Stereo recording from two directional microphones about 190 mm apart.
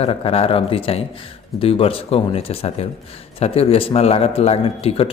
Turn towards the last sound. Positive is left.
turn(degrees=30)  # may be behind; listen again after turning